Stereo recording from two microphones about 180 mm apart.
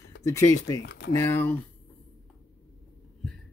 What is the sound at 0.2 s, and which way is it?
Speech, 15° left (ahead or behind).